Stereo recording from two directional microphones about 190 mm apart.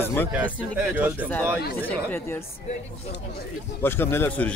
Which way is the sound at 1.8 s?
10° left (ahead or behind).